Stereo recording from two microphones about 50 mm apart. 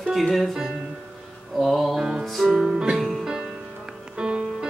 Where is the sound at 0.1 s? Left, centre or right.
Centre.